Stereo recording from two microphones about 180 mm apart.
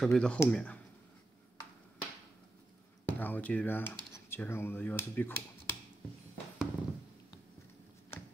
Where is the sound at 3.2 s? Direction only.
10° left (ahead or behind).